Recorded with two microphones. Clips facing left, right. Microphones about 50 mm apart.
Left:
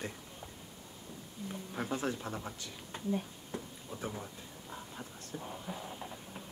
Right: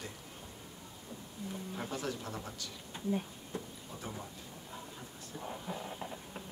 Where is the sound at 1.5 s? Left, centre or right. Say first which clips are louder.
Left 2 dB; centre.